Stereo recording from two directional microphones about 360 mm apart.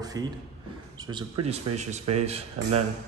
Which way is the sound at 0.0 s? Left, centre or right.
Centre.